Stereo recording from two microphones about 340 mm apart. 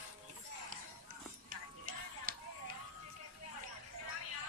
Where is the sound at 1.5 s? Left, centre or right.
Right.